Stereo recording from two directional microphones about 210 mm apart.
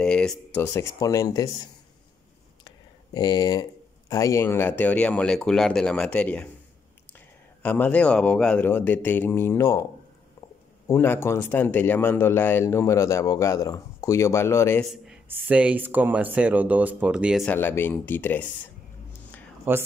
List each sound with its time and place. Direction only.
0.0 s speech: 5° left (ahead or behind)
2.6 s a sound: 20° left (ahead or behind)
4.1 s speech: 15° left (ahead or behind)
7.6 s speech: 5° left (ahead or behind)
10.9 s speech: 10° left (ahead or behind)
14.9 s speech: 5° right (ahead or behind)
17.5 s speech: 10° left (ahead or behind)
19.7 s speech: 10° right (ahead or behind)